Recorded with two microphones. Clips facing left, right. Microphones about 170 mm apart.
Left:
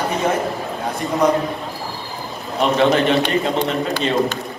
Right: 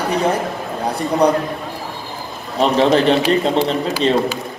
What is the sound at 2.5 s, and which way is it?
Speech, 35° right (ahead or behind).